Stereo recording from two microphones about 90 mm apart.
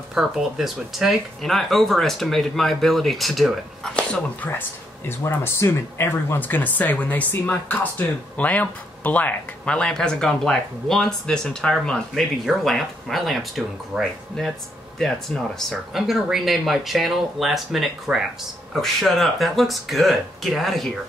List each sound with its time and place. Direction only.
0.1 s speech: 5° right (ahead or behind)
3.9 s speech: 15° left (ahead or behind)